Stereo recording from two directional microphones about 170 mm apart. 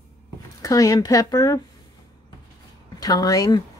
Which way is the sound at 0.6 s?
20° left (ahead or behind).